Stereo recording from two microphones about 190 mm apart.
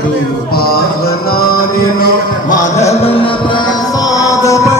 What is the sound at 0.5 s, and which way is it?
Music, 50° left (ahead or behind).